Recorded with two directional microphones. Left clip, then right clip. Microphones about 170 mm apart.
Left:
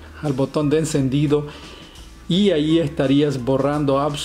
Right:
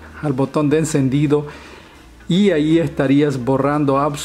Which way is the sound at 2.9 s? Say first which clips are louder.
Right 2 dB; 20° right (ahead or behind).